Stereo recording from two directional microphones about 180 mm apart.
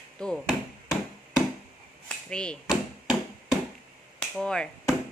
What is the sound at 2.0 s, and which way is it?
Hammer, 5° left (ahead or behind).